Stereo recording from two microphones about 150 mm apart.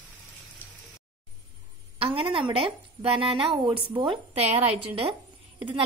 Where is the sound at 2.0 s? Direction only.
40° right (ahead or behind).